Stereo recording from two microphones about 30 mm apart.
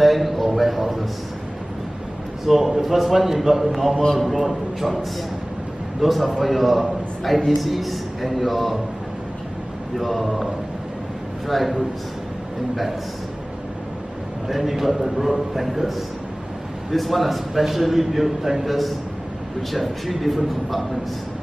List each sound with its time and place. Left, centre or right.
0.0 s a sound: centre
2.4 s a man's voice: centre
9.9 s a man's voice: centre
14.5 s a man's voice: centre
16.9 s a man's voice: centre